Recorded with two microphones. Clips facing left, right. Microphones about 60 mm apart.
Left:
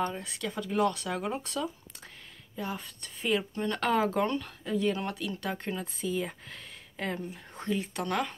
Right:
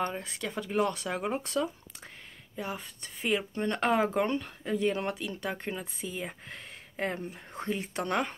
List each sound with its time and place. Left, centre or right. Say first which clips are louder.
0.0 s speech: even; right
2.5 s speech: left 1 dB; centre
3.5 s speech: right 1 dB; right
7.0 s speech: right 1 dB; right